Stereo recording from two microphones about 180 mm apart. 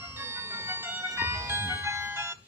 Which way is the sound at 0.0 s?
15° right (ahead or behind).